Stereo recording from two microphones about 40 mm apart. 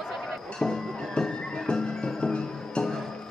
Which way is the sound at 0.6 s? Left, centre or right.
Centre.